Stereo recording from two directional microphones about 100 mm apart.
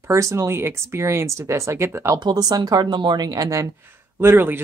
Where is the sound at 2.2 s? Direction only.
45° right (ahead or behind).